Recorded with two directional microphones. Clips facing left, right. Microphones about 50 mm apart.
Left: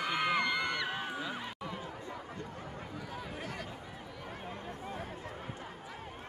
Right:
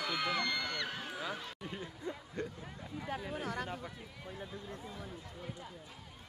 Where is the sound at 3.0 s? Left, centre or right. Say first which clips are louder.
Right 6 dB; right.